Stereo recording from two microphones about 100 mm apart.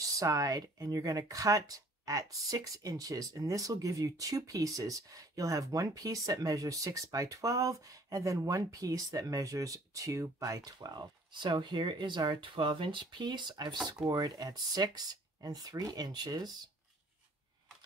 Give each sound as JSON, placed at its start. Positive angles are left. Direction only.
{"t": 0.0, "sound": "speech", "side_deg": -35}